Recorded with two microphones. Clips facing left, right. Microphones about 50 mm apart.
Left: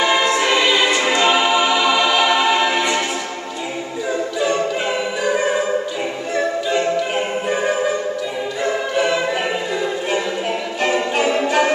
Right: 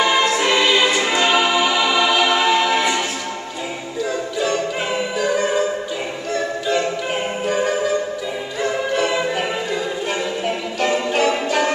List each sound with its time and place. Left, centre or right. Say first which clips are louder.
0.0 s choir: even; centre
5.2 s music: even; centre
10.1 s music: left 2 dB; centre